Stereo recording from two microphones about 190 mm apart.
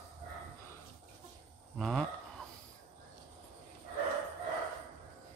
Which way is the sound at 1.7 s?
Centre (ahead or behind).